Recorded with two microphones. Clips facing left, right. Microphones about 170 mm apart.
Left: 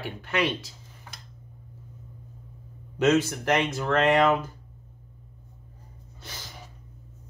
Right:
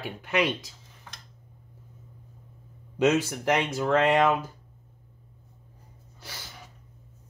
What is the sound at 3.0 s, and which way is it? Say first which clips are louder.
Speech: left 1 dB; 15° right (ahead or behind).